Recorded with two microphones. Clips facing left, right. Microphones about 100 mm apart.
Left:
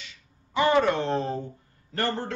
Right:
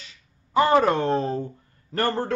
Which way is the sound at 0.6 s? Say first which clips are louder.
Right 3 dB; 40° right (ahead or behind).